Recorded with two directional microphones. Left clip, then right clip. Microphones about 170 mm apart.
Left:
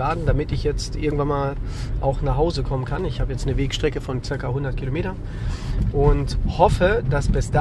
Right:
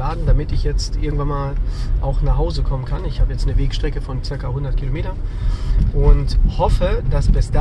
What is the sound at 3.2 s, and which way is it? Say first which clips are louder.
Speech: left 3 dB; 55° left (ahead or behind).